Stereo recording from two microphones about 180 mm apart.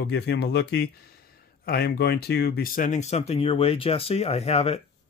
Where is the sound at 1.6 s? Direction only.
60° left (ahead or behind).